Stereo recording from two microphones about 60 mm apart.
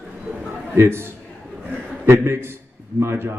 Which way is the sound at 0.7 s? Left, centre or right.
Right.